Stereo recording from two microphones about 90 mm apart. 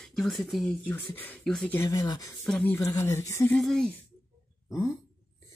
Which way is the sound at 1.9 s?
45° left (ahead or behind).